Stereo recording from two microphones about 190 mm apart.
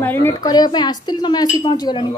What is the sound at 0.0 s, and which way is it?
Speech, 10° left (ahead or behind).